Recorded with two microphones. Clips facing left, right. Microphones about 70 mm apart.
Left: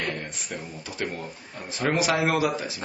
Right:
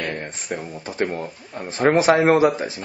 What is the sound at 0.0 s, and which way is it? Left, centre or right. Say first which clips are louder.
Mantra: right 3 dB; right.